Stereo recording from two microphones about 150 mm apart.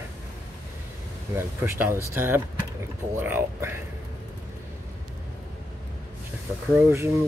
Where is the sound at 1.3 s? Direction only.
15° right (ahead or behind).